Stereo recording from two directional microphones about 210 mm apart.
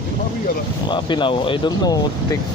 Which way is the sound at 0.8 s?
20° left (ahead or behind).